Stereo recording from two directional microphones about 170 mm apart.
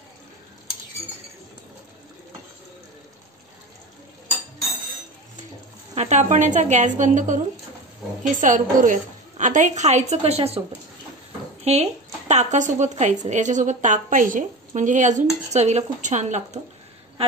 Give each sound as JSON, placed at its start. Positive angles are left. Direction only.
{"t": 5.9, "sound": "speech", "side_deg": -40}
{"t": 11.6, "sound": "speech", "side_deg": -40}